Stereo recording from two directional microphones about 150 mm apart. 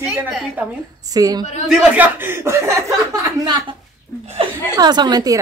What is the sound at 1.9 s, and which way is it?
Speech, 15° right (ahead or behind).